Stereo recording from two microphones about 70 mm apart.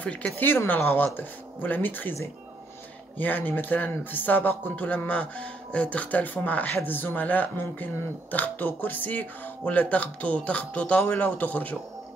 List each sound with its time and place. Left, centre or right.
0.0 s speech: centre
0.7 s speech: left
3.2 s speech: left